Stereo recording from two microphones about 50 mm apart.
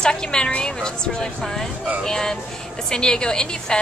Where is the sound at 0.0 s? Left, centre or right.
Centre.